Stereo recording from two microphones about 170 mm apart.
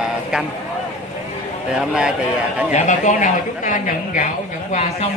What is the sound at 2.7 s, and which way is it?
A man's voice, 45° left (ahead or behind).